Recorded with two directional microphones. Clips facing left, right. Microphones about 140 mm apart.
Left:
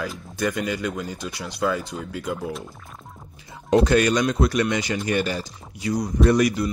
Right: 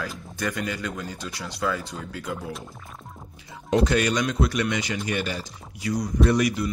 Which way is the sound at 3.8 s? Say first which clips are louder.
Left 4 dB; 45° left (ahead or behind).